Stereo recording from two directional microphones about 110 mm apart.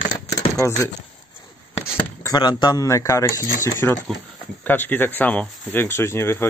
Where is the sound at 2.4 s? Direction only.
40° left (ahead or behind).